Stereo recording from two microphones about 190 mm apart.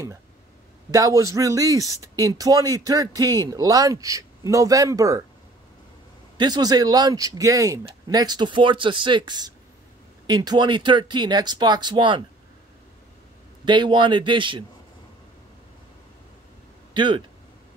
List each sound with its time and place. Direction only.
0.9 s speech: 15° right (ahead or behind)
6.3 s speech: 20° right (ahead or behind)
13.7 s speech: 25° right (ahead or behind)
16.9 s speech: 25° right (ahead or behind)